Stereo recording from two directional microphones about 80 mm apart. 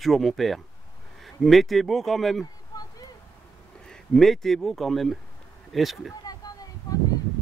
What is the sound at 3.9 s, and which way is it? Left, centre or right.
Speech, centre.